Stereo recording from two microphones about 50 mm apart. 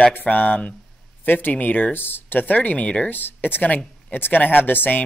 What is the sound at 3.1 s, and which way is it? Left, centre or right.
Speech, left.